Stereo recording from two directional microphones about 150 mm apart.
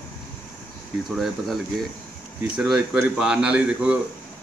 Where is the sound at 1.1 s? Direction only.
Centre (ahead or behind).